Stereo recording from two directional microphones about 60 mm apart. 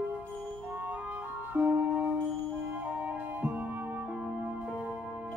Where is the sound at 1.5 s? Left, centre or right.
Right.